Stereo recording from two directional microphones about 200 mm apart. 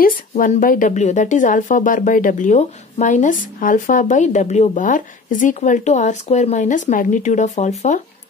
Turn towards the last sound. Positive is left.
turn(degrees=35)  # may be behind; listen again after turning